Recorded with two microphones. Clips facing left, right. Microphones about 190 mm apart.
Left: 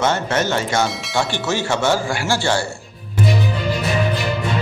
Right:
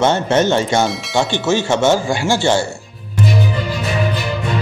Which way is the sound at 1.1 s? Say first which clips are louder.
Right 6 dB; 20° right (ahead or behind).